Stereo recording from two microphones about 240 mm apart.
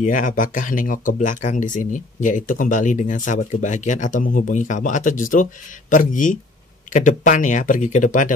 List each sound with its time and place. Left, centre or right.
0.0 s speech: left